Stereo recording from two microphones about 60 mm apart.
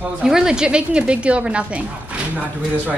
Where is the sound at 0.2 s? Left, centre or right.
Centre.